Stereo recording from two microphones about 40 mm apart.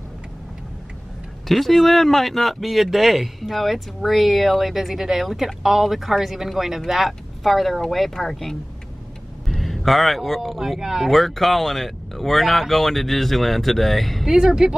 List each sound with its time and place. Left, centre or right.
1.5 s speech: centre
14.3 s speech: centre